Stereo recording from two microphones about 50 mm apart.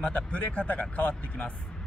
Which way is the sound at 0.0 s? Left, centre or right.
Left.